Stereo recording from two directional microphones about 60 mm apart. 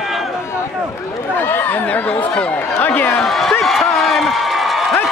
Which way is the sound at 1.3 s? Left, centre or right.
Left.